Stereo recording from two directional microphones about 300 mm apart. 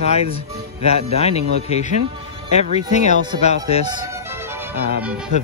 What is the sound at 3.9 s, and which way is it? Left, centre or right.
Music, centre.